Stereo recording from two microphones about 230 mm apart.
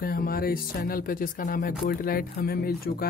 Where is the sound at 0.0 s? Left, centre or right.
Left.